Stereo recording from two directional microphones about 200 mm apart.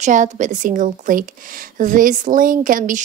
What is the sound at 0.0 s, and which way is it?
Speech, 40° right (ahead or behind).